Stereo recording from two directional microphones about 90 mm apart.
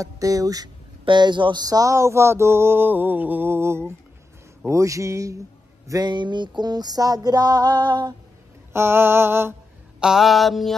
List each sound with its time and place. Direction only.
0.0 s speech: 40° right (ahead or behind)
1.0 s mantra: 60° right (ahead or behind); by 3.8 s 25° right (ahead or behind)
4.6 s speech: 35° right (ahead or behind)
5.9 s a sound: 50° right (ahead or behind)
8.7 s mantra: 25° right (ahead or behind)
9.9 s a sound: 5° right (ahead or behind)